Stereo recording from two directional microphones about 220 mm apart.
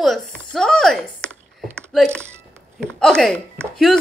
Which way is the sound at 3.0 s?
Centre (ahead or behind).